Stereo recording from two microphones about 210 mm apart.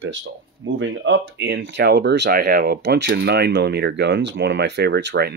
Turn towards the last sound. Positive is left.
turn(degrees=-50)  # may be behind; listen again after turning